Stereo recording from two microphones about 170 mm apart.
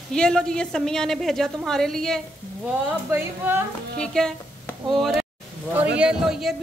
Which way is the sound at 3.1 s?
10° right (ahead or behind).